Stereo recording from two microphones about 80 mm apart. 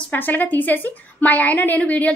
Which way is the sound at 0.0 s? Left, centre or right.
Left.